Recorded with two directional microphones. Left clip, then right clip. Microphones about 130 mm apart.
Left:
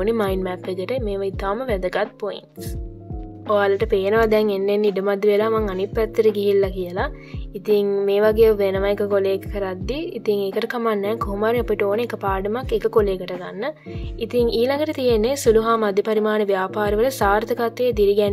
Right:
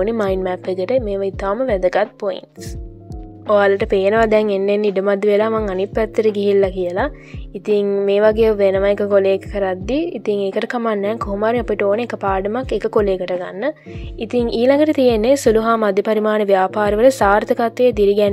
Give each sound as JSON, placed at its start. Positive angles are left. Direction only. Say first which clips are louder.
{"t": 0.0, "sound": "a woman's voice", "louder": "right 3 dB", "side_deg": -40}
{"t": 3.4, "sound": "a woman's voice", "louder": "right 4 dB", "side_deg": -60}